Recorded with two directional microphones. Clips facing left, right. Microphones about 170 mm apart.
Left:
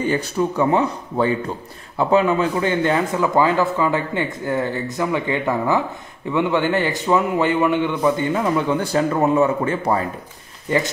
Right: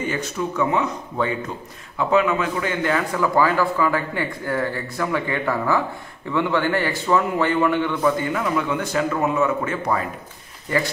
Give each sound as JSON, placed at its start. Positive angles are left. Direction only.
{"t": 0.0, "sound": "a man's voice", "side_deg": 35}